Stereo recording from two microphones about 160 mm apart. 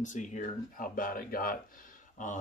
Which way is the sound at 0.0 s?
50° left (ahead or behind).